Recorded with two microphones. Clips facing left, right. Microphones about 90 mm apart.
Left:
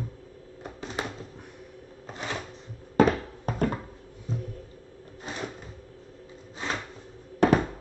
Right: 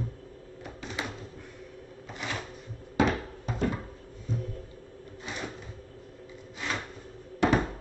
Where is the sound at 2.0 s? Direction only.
35° left (ahead or behind).